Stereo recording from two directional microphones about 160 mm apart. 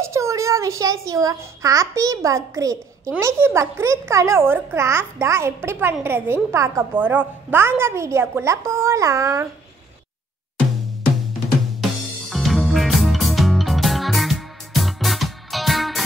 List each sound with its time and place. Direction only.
0.0 s a child's voice: 20° right (ahead or behind)
12.3 s music: centre (ahead or behind)